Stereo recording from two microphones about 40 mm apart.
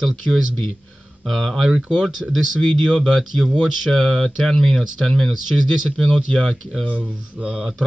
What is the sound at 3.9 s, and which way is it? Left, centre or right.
Speech, centre.